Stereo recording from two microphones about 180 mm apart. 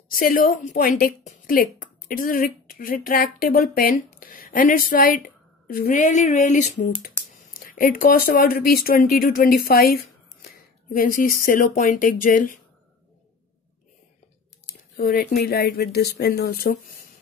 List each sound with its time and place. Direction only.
0.1 s a woman's voice: 55° left (ahead or behind)
15.0 s speech: 55° left (ahead or behind)